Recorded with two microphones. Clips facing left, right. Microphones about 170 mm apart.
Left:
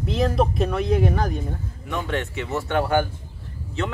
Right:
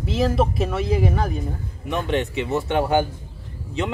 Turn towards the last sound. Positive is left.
turn(degrees=-15)  # may be behind; listen again after turning